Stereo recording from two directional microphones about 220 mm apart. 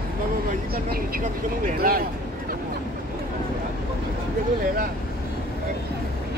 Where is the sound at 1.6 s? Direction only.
40° right (ahead or behind).